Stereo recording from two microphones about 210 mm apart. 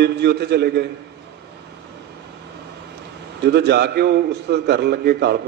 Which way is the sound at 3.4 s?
50° right (ahead or behind).